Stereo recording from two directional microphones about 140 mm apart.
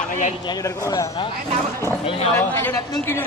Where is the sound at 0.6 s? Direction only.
20° left (ahead or behind).